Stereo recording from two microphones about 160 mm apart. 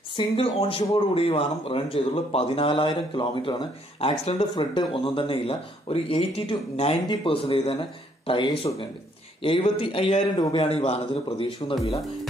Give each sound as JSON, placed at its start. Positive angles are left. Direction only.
{"t": 0.1, "sound": "speech", "side_deg": 35}
{"t": 4.2, "sound": "speech", "side_deg": 45}
{"t": 4.6, "sound": "speech", "side_deg": 30}
{"t": 10.3, "sound": "a man's voice", "side_deg": 25}
{"t": 10.6, "sound": "speech", "side_deg": 40}